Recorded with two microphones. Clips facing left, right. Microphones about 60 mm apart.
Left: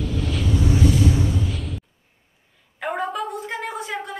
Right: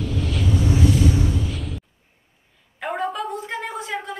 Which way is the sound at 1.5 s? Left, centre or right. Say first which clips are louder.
Even; centre.